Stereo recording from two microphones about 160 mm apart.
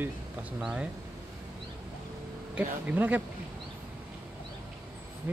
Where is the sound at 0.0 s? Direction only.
5° right (ahead or behind).